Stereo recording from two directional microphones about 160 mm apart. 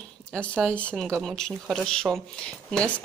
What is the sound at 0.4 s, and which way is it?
Speech, 5° left (ahead or behind).